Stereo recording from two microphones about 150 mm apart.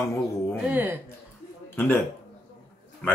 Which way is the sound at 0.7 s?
10° right (ahead or behind).